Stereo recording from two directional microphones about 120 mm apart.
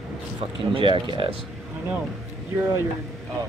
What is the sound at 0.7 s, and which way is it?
Speech, 45° right (ahead or behind).